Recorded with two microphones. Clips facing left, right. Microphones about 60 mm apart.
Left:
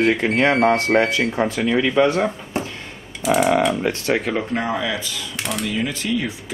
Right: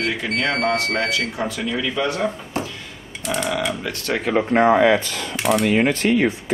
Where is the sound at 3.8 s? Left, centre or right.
Left.